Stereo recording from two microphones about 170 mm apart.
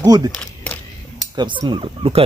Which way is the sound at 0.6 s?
10° left (ahead or behind).